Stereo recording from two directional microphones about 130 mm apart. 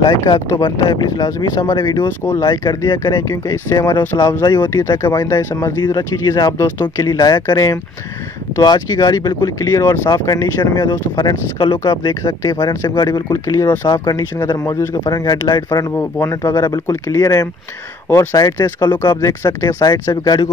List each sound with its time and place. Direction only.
0.0 s speech: 30° left (ahead or behind)
2.0 s speech: 15° left (ahead or behind)
2.4 s speech: 30° left (ahead or behind)
18.0 s speech: 15° left (ahead or behind)
18.3 s speech: 30° left (ahead or behind)